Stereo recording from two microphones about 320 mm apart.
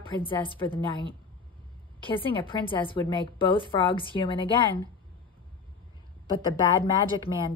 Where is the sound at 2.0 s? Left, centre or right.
Centre.